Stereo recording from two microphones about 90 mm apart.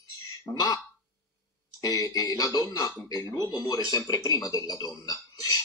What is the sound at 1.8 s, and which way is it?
Speech, 45° left (ahead or behind).